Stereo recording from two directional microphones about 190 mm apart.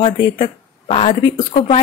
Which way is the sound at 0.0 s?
30° left (ahead or behind).